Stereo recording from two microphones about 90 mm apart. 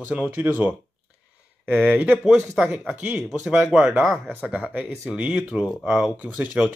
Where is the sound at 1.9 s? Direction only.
15° right (ahead or behind).